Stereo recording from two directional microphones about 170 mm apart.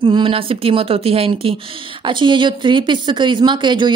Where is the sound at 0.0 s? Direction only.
30° right (ahead or behind).